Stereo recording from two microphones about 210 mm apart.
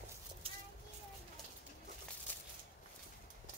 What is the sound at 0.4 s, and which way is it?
Child singing, 25° right (ahead or behind).